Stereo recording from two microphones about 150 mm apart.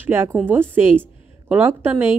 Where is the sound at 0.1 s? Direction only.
15° right (ahead or behind).